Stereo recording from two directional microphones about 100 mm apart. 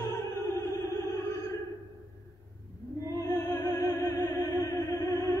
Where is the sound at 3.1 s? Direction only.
35° left (ahead or behind).